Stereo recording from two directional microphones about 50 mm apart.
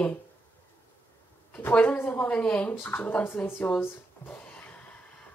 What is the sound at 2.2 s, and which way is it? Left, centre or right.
Speech, left.